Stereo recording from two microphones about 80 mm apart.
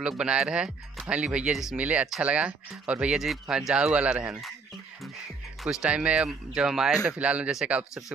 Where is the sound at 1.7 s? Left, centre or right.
Centre.